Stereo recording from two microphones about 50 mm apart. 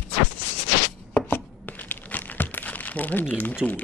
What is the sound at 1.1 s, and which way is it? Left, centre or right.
Crumpling, left.